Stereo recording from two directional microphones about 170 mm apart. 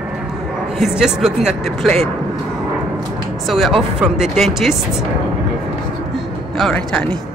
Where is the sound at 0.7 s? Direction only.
Centre (ahead or behind).